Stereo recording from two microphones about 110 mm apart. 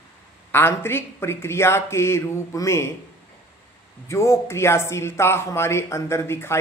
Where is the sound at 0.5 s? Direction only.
20° left (ahead or behind).